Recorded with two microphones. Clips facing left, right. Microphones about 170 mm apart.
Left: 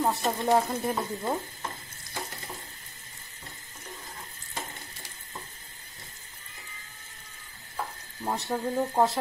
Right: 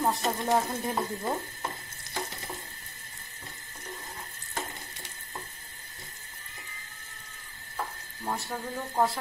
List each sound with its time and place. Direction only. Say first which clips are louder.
0.0 s speech: left 1 dB; centre (ahead or behind)
8.3 s speech: left 4 dB; 20° left (ahead or behind)